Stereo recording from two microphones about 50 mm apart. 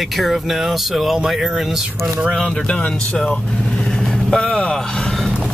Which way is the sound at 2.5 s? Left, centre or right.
Left.